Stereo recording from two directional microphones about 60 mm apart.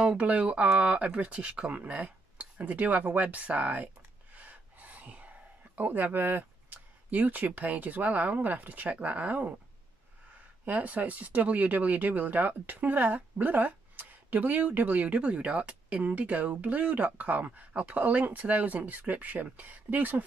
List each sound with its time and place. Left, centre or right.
0.0 s speech: right
10.6 s speech: right